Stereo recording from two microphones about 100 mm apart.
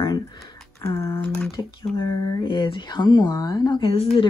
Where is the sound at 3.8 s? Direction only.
65° left (ahead or behind).